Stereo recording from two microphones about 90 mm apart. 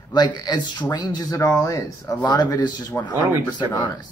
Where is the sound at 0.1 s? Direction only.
50° left (ahead or behind).